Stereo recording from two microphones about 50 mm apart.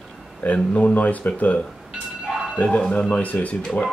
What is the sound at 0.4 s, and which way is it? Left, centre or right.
Speech, left.